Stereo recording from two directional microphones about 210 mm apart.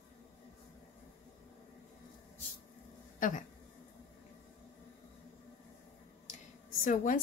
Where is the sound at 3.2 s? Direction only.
40° left (ahead or behind).